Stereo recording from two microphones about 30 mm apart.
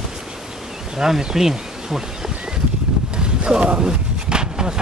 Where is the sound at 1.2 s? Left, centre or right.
Centre.